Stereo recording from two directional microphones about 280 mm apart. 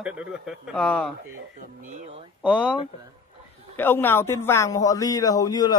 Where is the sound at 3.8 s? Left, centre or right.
Centre.